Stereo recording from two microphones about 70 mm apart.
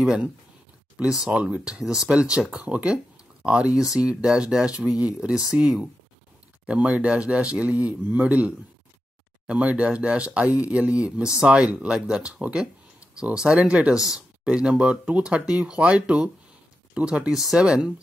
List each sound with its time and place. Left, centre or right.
1.1 s speech: centre
13.9 s speech: centre